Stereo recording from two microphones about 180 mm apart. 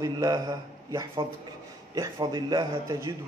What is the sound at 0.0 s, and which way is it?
A man's voice, 20° right (ahead or behind).